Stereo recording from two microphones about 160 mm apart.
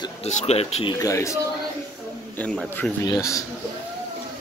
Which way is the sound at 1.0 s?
20° left (ahead or behind).